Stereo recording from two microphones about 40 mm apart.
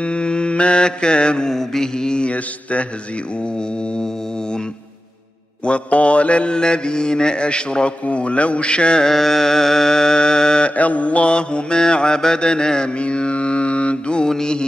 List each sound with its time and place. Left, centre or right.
0.0 s mantra: left
1.5 s mantra: centre
2.2 s mantra: left
5.7 s mantra: left
9.0 s mantra: centre
10.8 s mantra: left
14.2 s music: centre